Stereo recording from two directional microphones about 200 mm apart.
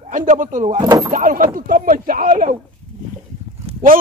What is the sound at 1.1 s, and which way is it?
Speech, 40° right (ahead or behind).